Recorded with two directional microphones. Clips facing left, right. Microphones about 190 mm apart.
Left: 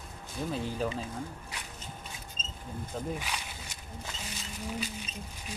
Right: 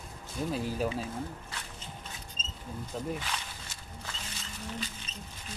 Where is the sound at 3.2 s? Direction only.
10° left (ahead or behind).